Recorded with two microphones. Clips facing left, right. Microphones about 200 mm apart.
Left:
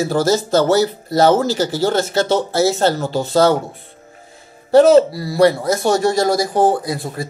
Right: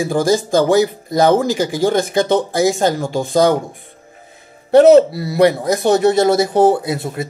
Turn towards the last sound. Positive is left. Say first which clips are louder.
# right 2 dB
turn(degrees=-25)  # may be behind; listen again after turning